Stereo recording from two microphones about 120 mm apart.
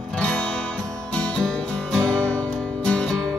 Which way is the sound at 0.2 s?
10° left (ahead or behind).